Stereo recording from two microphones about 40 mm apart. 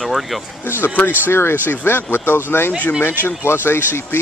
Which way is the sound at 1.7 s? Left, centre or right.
Left.